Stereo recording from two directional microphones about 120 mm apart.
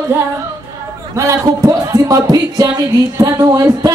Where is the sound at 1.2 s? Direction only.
25° right (ahead or behind).